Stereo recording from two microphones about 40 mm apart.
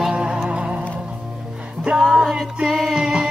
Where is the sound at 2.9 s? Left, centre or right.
Right.